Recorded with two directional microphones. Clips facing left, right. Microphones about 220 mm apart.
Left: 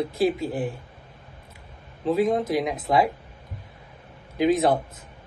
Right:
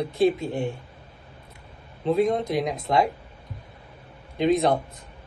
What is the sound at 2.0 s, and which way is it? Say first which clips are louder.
A man's voice: even; centre (ahead or behind).